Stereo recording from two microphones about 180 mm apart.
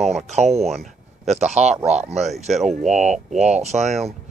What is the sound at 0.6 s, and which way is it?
Speech, centre (ahead or behind).